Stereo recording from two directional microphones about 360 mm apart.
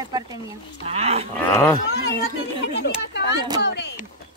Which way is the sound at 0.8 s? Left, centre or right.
Centre.